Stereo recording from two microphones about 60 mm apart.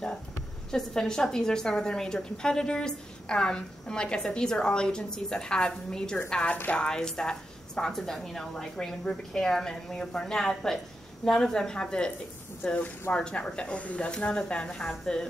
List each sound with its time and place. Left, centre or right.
0.7 s a woman's voice: centre